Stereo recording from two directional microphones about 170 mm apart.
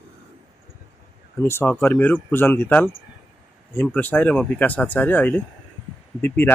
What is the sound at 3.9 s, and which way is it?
Speech, 10° left (ahead or behind).